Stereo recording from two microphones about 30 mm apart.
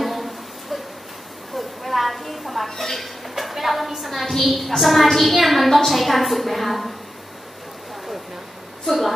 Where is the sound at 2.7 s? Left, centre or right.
Centre.